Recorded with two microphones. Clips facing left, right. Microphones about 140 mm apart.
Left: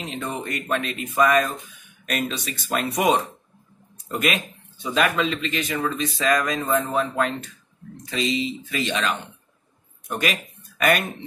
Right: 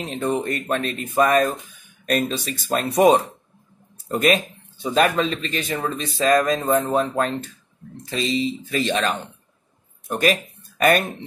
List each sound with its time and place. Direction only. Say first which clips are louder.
0.1 s speech: right 8 dB; 35° right (ahead or behind)